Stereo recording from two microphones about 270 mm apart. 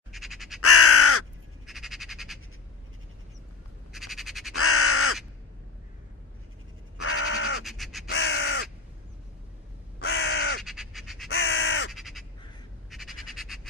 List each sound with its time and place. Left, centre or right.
0.1 s crow: centre
0.6 s crow: left
1.7 s frog: centre
3.9 s squawk: centre
4.6 s crow: left
7.0 s crow: left
7.6 s crow: centre
8.1 s crow: left
9.9 s crow: left
10.6 s crow: centre
11.2 s crow: left
11.9 s crow: centre
12.9 s bird: centre